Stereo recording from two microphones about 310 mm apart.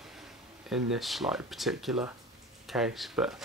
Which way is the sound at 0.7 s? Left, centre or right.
Centre.